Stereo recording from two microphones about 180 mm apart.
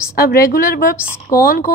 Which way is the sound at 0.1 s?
55° left (ahead or behind).